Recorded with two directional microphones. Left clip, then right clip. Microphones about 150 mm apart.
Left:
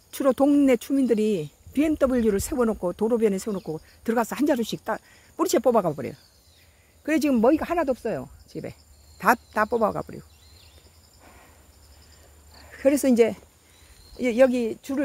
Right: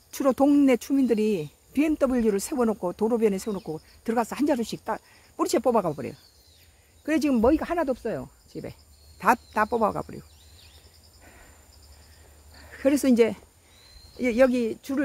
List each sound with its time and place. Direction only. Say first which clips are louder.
0.1 s speech: left 1 dB; centre (ahead or behind)
12.5 s speech: left 2 dB; centre (ahead or behind)